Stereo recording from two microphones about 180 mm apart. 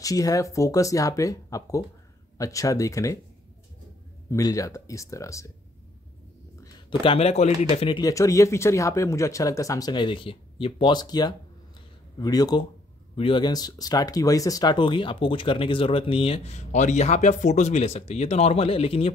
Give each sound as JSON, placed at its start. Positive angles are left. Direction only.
{"t": 0.0, "sound": "speech", "side_deg": 20}
{"t": 4.3, "sound": "speech", "side_deg": 20}
{"t": 6.6, "sound": "speech", "side_deg": 25}